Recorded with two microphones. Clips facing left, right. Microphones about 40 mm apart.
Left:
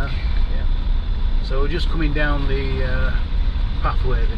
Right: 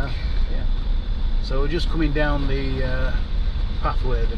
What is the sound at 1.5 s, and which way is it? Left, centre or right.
Speech, left.